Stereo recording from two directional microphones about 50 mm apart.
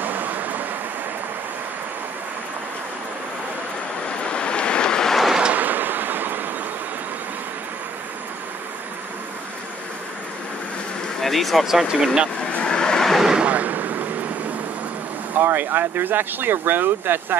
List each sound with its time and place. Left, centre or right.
0.0 s vehicle: right
4.3 s vehicle: left
5.1 s vehicle: centre
5.5 s a sound: right
11.1 s speech: centre
11.7 s speech: centre
12.5 s a sound: centre
13.4 s a sound: right
15.4 s speech: right